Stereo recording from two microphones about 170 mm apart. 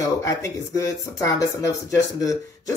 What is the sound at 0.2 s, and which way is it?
Speech, 20° left (ahead or behind).